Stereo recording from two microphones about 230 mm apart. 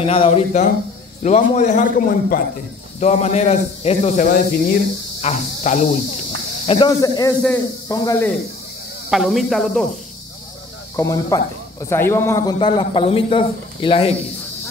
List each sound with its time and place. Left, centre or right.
0.0 s a man's voice: left
9.1 s speech: centre
11.0 s a man's voice: centre